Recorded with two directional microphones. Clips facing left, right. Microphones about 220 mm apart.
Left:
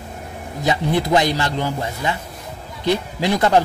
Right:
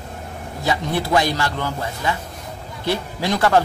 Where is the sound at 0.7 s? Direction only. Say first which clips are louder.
Left 3 dB; 20° left (ahead or behind).